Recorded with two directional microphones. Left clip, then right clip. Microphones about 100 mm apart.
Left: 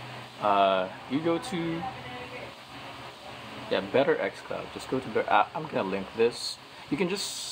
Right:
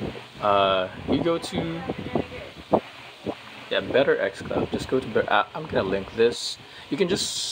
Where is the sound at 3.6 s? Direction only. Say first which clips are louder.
Right 4 dB; 45° right (ahead or behind).